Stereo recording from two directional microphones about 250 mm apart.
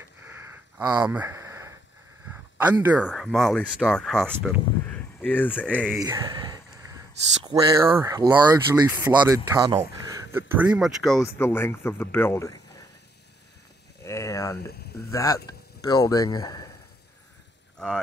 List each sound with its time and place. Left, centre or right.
0.7 s speech: centre
5.9 s speech: centre
10.3 s speech: centre
14.0 s a sound: centre
15.0 s speech: centre
17.7 s speech: centre